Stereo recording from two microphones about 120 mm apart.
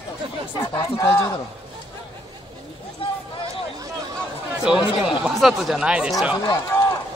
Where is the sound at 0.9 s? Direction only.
25° left (ahead or behind).